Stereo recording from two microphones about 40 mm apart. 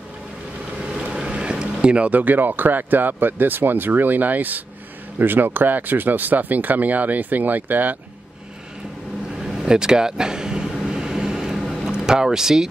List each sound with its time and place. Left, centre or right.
1.2 s vehicle: right
2.0 s speech: right
9.4 s vehicle: centre
10.7 s a sound: centre